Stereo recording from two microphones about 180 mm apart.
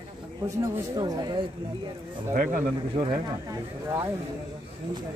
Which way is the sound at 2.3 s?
45° right (ahead or behind).